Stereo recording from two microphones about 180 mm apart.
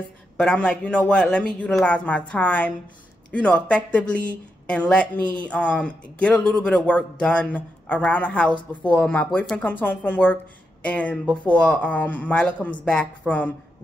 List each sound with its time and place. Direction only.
0.4 s speech: 5° left (ahead or behind)